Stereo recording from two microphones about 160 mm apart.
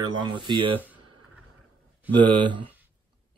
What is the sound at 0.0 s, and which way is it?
Speech, 30° right (ahead or behind).